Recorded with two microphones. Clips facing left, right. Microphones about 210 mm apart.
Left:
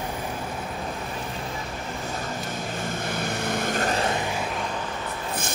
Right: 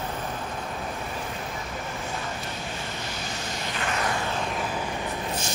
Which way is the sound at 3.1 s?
55° left (ahead or behind).